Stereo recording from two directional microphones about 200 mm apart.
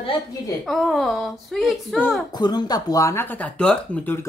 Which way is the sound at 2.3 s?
20° left (ahead or behind).